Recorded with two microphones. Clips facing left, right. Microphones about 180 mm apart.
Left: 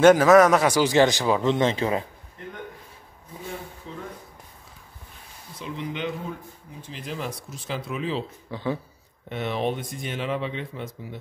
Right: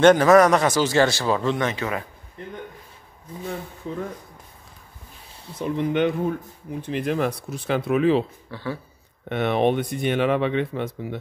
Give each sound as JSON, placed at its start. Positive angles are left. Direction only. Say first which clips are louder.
{"t": 0.0, "sound": "speech", "louder": "even", "side_deg": 5}
{"t": 3.9, "sound": "speech", "louder": "right 9 dB", "side_deg": -50}
{"t": 5.6, "sound": "speech", "louder": "right 9 dB", "side_deg": -55}
{"t": 8.5, "sound": "speech", "louder": "left 2 dB", "side_deg": 15}
{"t": 9.3, "sound": "speech", "louder": "right 6 dB", "side_deg": -60}